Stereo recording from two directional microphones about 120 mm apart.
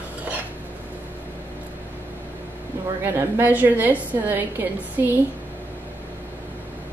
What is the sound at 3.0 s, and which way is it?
A woman's voice, 15° right (ahead or behind).